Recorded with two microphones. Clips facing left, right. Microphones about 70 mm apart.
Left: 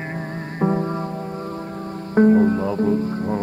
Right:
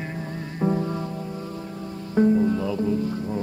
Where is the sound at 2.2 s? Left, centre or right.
Left.